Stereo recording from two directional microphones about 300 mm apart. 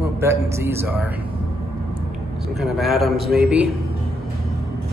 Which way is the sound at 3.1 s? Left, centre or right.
Right.